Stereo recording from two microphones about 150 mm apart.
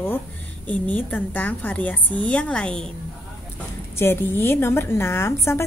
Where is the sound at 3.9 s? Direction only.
15° left (ahead or behind).